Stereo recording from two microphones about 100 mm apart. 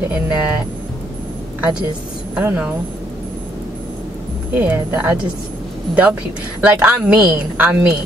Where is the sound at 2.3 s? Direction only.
15° right (ahead or behind).